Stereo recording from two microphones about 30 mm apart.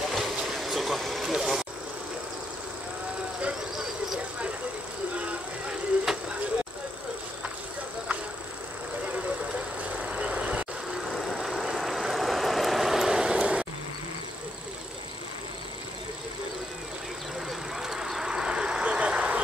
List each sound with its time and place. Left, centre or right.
0.1 s train: centre
0.6 s a sound: centre
1.2 s vehicle: centre
3.7 s a sound: centre
4.2 s vehicle: right
5.1 s a sound: right
9.0 s vehicle: right
9.4 s vehicle: right
11.1 s vehicle: centre
13.4 s insect: right
17.5 s a sound: centre
18.3 s vehicle: right
18.9 s vehicle: right